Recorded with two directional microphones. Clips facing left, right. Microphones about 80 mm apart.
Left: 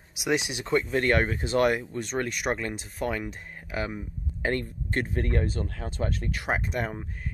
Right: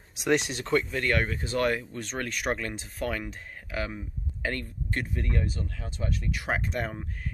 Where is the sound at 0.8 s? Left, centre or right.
Left.